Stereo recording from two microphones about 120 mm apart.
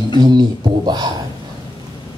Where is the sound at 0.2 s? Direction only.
35° right (ahead or behind).